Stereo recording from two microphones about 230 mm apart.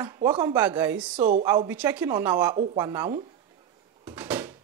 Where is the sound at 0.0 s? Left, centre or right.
Centre.